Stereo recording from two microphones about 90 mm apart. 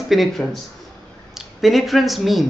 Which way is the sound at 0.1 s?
Centre (ahead or behind).